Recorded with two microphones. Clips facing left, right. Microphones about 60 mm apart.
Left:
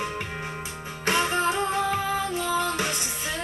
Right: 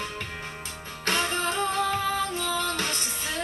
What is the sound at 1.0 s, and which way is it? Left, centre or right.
Music, centre.